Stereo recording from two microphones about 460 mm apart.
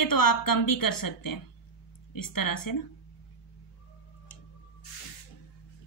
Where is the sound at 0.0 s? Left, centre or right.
Left.